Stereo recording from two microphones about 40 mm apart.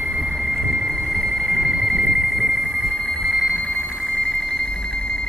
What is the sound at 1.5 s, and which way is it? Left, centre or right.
Train, centre.